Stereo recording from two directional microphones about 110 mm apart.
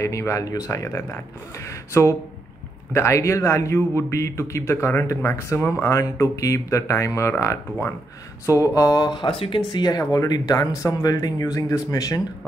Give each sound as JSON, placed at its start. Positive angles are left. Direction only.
{"t": 0.0, "sound": "a man's voice", "side_deg": 25}
{"t": 9.7, "sound": "speech", "side_deg": 40}